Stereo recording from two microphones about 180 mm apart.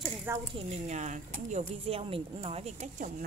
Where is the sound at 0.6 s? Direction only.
40° right (ahead or behind).